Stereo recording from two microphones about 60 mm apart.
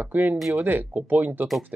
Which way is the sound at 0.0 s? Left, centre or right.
Right.